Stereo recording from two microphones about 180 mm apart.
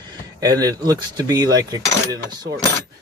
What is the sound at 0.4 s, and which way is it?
Speech, 20° right (ahead or behind).